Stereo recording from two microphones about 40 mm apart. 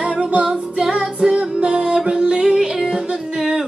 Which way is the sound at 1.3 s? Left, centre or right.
Right.